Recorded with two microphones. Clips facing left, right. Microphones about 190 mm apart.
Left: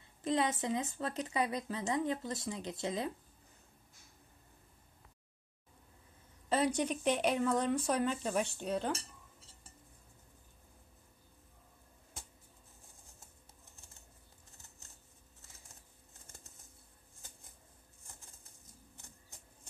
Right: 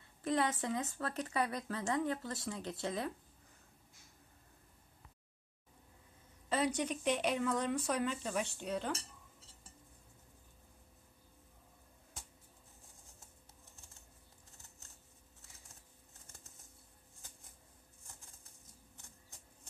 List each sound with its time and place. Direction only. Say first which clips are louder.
0.2 s speech: left 1 dB; 20° left (ahead or behind)
6.5 s speech: left 3 dB; 35° left (ahead or behind)